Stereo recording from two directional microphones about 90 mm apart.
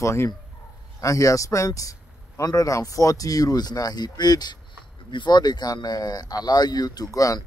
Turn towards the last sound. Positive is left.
turn(degrees=40)  # may be behind; listen again after turning